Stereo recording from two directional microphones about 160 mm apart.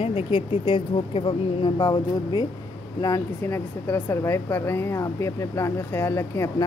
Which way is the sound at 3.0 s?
15° left (ahead or behind).